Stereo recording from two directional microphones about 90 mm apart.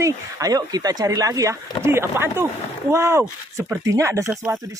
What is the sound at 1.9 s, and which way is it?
Speech, 25° right (ahead or behind).